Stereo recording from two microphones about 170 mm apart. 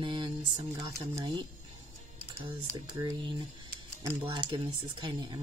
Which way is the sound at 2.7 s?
20° right (ahead or behind).